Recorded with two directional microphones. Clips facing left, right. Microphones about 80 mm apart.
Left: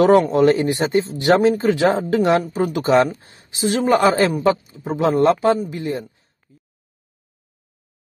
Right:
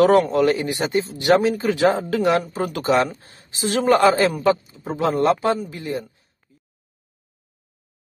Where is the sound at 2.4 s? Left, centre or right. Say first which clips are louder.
Left 4 dB; centre.